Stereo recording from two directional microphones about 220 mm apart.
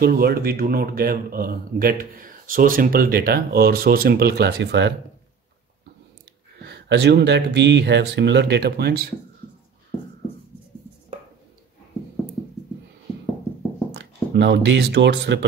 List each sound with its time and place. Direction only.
0.0 s speech: 45° right (ahead or behind)
6.6 s speech: 50° right (ahead or behind)
13.9 s speech: 50° right (ahead or behind)